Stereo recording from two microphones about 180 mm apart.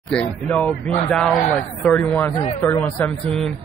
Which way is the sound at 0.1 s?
5° left (ahead or behind).